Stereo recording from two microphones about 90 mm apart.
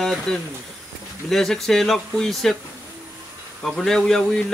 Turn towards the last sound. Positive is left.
turn(degrees=5)  # may be behind; listen again after turning